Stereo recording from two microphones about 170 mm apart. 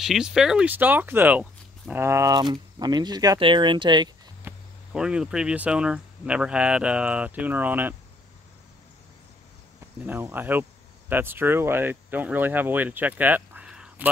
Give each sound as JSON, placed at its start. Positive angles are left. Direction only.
{"t": 0.0, "sound": "speech", "side_deg": 0}
{"t": 4.5, "sound": "speech", "side_deg": -5}
{"t": 10.0, "sound": "speech", "side_deg": -10}